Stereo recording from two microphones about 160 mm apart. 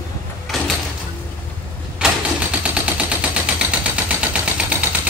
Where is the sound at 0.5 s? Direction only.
Centre (ahead or behind).